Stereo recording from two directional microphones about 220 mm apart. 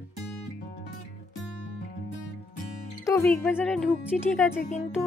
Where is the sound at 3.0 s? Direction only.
10° left (ahead or behind).